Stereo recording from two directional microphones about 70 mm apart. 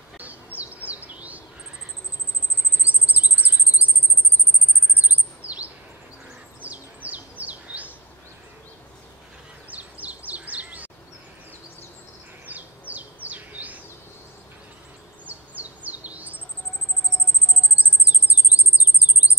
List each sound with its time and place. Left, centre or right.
0.6 s chirp: right
2.8 s chirp: right
4.9 s chirp: right
6.6 s bird: right
9.7 s bird: right
12.4 s bird: right
15.2 s bird: right
17.7 s cricket: right